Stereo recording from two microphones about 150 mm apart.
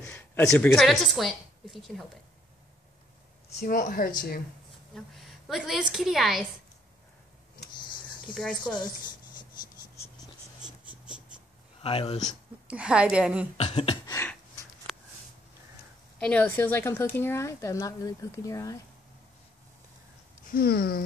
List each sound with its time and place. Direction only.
0.0 s a sound: 15° left (ahead or behind)
0.5 s a woman's voice: centre (ahead or behind)
3.6 s speech: 70° left (ahead or behind)
4.9 s a woman's voice: centre (ahead or behind)
8.4 s speech: 5° left (ahead or behind)
10.6 s a sound: 5° right (ahead or behind)
11.8 s speech: 40° left (ahead or behind)
12.6 s a woman's voice: 10° right (ahead or behind)
13.6 s speech: 40° left (ahead or behind)
14.0 s a sound: 20° left (ahead or behind)
14.9 s a sound: centre (ahead or behind)
16.2 s speech: 10° left (ahead or behind)
20.5 s speech: 85° left